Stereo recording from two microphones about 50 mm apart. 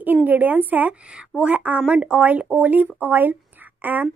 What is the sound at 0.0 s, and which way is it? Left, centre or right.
Speech, right.